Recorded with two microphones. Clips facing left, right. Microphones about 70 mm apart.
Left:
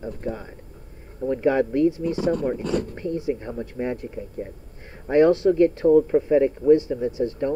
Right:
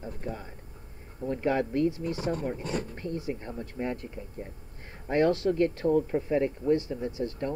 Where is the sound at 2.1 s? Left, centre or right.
Left.